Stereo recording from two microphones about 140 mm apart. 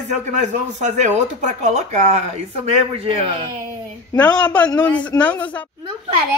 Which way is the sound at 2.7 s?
45° right (ahead or behind).